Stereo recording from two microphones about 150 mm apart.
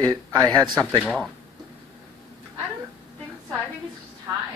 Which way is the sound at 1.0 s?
Centre (ahead or behind).